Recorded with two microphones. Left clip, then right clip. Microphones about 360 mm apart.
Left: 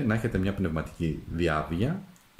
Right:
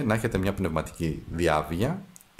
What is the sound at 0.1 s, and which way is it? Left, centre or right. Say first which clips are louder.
Speech: right 3 dB; centre.